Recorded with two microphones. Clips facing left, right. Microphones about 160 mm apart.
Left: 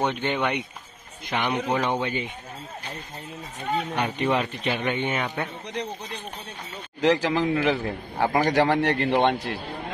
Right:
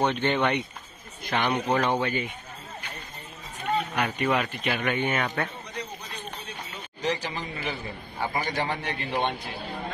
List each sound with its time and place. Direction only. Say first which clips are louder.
0.0 s speech: right 1 dB; 10° left (ahead or behind)
3.9 s speech: left 3 dB; 25° left (ahead or behind)
7.0 s a man's voice: left 9 dB; 90° left; by 9.5 s 65° left (ahead or behind)